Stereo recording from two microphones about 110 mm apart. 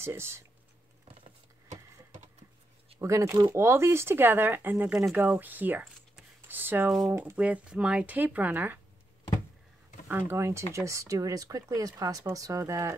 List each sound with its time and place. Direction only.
0.0 s speech: 25° right (ahead or behind)
3.0 s speech: 25° right (ahead or behind)
10.0 s speech: 20° right (ahead or behind)